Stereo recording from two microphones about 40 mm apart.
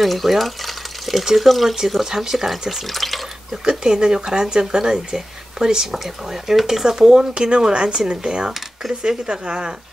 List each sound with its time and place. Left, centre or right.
0.0 s speech: centre
3.6 s a woman's voice: centre